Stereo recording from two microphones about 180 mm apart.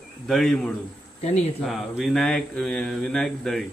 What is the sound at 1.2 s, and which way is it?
Speech, 35° left (ahead or behind).